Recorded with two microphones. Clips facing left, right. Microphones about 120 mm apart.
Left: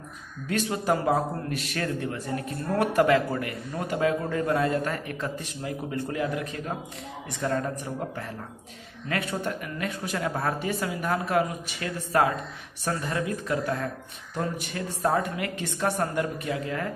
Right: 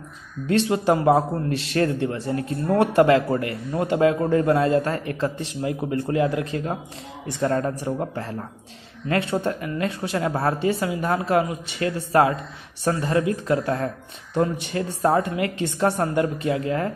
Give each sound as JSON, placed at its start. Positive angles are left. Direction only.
{"t": 0.5, "sound": "speech", "side_deg": -30}
{"t": 9.1, "sound": "speech", "side_deg": -30}